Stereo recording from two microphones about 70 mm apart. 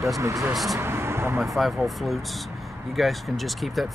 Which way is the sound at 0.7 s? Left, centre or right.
Right.